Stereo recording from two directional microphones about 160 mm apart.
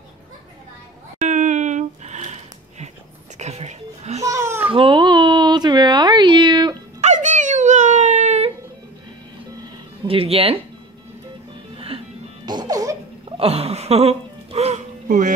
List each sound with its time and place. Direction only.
1.2 s a sound: 50° right (ahead or behind)
3.3 s music: 45° right (ahead or behind)
4.2 s babbling: 20° right (ahead or behind)
4.6 s a sound: 30° right (ahead or behind)
7.0 s dog: 50° right (ahead or behind)
10.0 s speech: 35° right (ahead or behind)
12.4 s music: 25° right (ahead or behind)
13.4 s music: 40° right (ahead or behind); by 15.3 s 55° right (ahead or behind)